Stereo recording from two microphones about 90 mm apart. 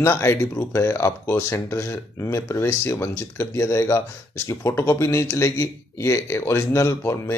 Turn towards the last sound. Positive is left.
turn(degrees=30)  # may be behind; listen again after turning